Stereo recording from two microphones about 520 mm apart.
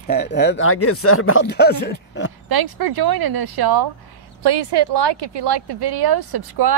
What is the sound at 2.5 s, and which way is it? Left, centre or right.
Speech, right.